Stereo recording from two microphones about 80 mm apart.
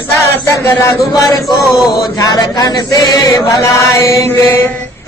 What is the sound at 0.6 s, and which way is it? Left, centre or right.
Speech, left.